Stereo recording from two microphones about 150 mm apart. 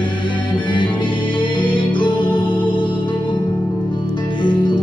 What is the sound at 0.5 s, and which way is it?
Music, 35° left (ahead or behind).